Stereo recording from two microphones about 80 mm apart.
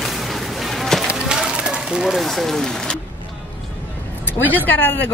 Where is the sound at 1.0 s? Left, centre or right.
Centre.